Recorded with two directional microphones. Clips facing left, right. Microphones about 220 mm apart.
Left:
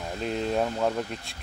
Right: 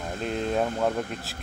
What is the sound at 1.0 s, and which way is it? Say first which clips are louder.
Speech: right 1 dB; 50° right (ahead or behind).